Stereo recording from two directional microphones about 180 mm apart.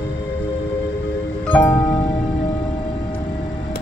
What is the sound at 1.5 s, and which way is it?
Music, 10° left (ahead or behind).